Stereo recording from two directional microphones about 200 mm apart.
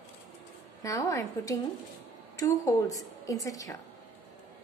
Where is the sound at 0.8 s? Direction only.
15° left (ahead or behind).